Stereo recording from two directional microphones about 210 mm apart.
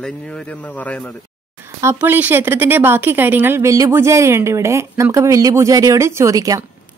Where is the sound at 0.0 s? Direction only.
5° left (ahead or behind).